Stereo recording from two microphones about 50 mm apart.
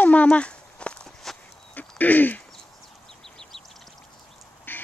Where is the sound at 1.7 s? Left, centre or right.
Left.